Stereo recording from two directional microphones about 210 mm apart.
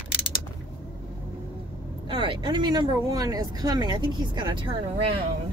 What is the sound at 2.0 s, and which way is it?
Speech, 25° right (ahead or behind).